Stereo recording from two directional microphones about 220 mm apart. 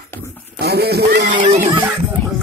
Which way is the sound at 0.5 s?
45° right (ahead or behind).